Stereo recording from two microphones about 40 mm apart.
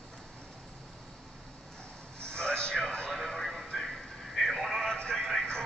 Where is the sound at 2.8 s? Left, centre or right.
Centre.